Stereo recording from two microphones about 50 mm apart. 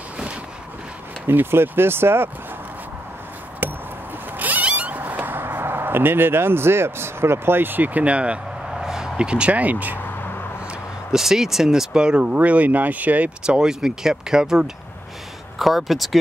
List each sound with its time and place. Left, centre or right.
1.2 s speech: right
3.6 s chop: right
4.4 s a sound: right
8.7 s speech: centre; by 9.9 s right
11.1 s speech: centre
12.4 s speech: right
13.4 s speech: centre
15.6 s speech: centre